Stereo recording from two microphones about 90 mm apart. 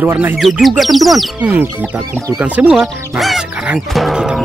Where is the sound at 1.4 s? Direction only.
15° right (ahead or behind).